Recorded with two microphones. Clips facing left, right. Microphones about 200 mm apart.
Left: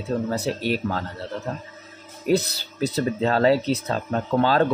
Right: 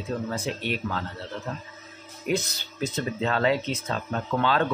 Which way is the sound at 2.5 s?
40° left (ahead or behind).